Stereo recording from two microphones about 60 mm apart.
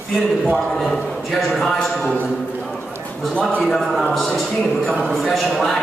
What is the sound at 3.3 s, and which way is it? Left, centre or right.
Speech, centre.